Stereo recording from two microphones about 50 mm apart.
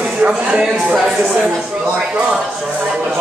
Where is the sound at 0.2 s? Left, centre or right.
Right.